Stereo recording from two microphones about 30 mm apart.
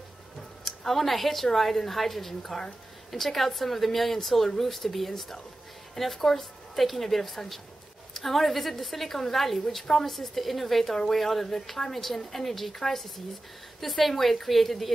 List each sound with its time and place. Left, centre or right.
0.7 s a woman's voice: centre